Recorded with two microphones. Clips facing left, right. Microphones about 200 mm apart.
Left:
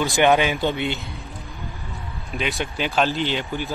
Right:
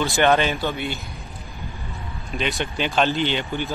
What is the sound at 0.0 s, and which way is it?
Speech, 15° left (ahead or behind).